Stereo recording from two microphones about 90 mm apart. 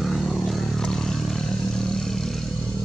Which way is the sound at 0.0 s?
Centre (ahead or behind).